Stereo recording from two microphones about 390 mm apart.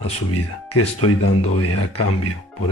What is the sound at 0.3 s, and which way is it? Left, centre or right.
Speech, left.